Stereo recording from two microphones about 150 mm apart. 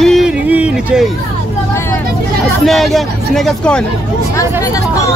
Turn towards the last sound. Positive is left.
turn(degrees=5)  # may be behind; listen again after turning